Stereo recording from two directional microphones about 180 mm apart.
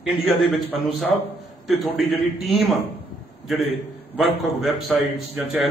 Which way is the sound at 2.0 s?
Centre (ahead or behind).